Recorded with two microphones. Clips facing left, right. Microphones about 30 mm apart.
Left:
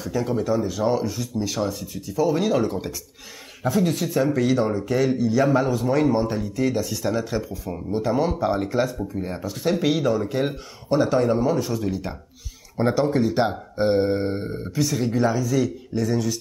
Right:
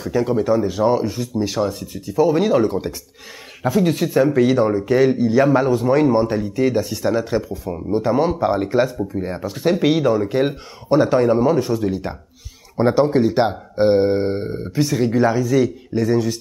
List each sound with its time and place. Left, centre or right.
0.0 s speech: centre